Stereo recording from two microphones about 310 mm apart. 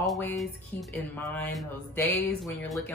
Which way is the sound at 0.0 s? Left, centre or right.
Centre.